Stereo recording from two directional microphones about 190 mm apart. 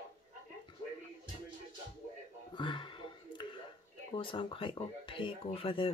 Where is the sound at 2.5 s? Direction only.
25° left (ahead or behind).